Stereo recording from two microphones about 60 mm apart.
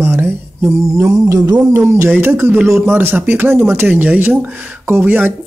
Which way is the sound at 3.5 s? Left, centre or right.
Right.